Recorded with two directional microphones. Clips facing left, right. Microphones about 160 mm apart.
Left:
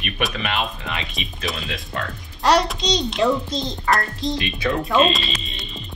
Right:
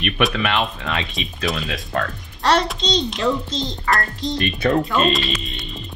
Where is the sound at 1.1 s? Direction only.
Centre (ahead or behind).